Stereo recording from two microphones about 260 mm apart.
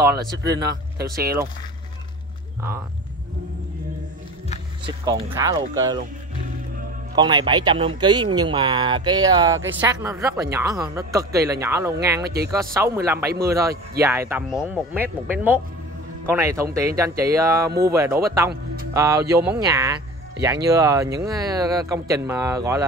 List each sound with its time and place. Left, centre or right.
0.9 s speech: right
4.8 s speech: centre
7.2 s speech: centre